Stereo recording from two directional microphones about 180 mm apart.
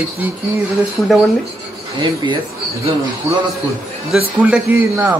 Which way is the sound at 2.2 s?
25° right (ahead or behind).